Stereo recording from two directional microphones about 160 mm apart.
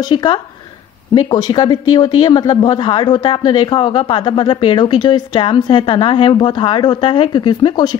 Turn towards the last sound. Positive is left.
turn(degrees=30)  # may be behind; listen again after turning